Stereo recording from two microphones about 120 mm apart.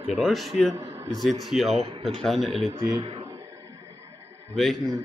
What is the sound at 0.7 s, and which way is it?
Speech, 20° right (ahead or behind).